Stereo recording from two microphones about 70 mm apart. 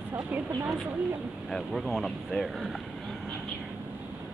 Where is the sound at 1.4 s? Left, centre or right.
Centre.